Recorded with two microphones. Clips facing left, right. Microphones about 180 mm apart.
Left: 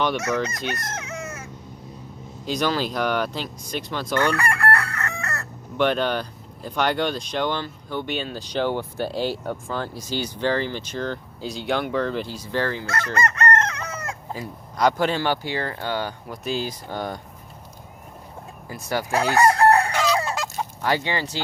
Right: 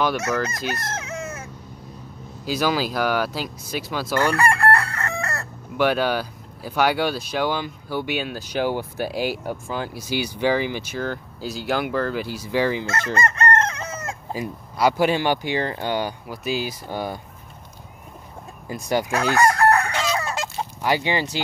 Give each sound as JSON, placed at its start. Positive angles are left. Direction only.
{"t": 0.3, "sound": "speech", "side_deg": -5}
{"t": 0.9, "sound": "chicken", "side_deg": -25}
{"t": 2.4, "sound": "speech", "side_deg": -5}
{"t": 4.4, "sound": "chicken", "side_deg": -30}
{"t": 5.8, "sound": "speech", "side_deg": -5}
{"t": 14.3, "sound": "speech", "side_deg": -10}
{"t": 18.7, "sound": "speech", "side_deg": -15}
{"t": 19.3, "sound": "crowing", "side_deg": 30}
{"t": 20.1, "sound": "chicken", "side_deg": 30}
{"t": 20.3, "sound": "honk", "side_deg": -15}